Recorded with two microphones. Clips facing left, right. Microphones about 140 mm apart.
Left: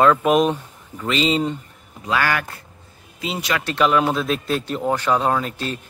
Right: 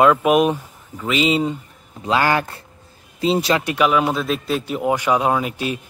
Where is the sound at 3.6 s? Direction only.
5° right (ahead or behind).